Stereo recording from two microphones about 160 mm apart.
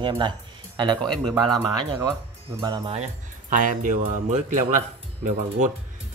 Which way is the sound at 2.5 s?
30° right (ahead or behind).